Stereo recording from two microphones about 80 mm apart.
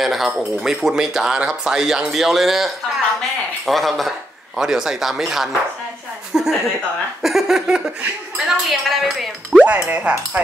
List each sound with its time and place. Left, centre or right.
0.0 s a woman's voice: centre
7.2 s a sound: centre
8.5 s speech: centre
9.8 s speech: centre